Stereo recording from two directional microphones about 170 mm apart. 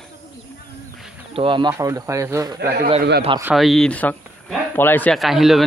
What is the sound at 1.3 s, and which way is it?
Speech, 30° right (ahead or behind).